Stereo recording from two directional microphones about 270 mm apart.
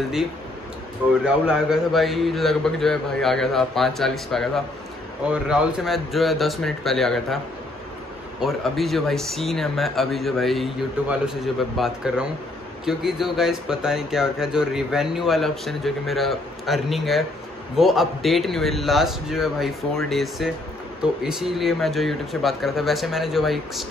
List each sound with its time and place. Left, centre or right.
1.2 s speech: centre
8.4 s speech: centre